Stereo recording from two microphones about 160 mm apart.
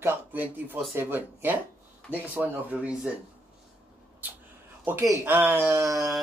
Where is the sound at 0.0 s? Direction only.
10° right (ahead or behind).